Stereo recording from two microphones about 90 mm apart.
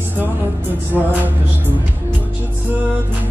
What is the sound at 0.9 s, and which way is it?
Music, 5° right (ahead or behind).